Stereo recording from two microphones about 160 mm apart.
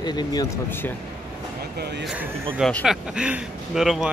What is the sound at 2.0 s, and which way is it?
Speech, 10° right (ahead or behind).